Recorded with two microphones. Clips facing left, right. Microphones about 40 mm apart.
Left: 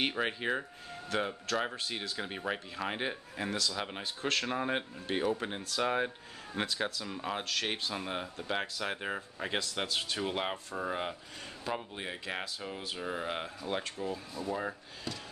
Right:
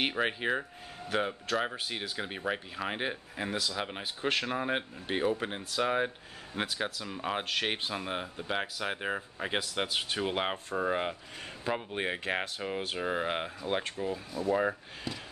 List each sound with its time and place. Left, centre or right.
0.0 s speech: centre
7.2 s speech: right
8.0 s speech: centre
11.9 s speech: right
14.0 s speech: centre
14.5 s speech: right